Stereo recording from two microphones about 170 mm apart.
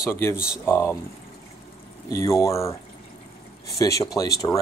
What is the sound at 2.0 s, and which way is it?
Speech, 20° left (ahead or behind).